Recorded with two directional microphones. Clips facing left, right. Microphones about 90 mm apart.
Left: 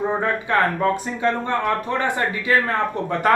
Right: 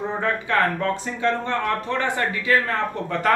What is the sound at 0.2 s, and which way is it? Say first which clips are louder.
A man's voice: left 2 dB; 20° left (ahead or behind).